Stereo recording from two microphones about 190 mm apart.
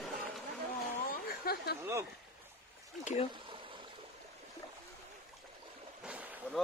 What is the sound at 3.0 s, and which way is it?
Speech, 35° left (ahead or behind).